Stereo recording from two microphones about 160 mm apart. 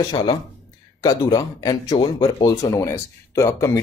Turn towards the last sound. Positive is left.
turn(degrees=15)  # may be behind; listen again after turning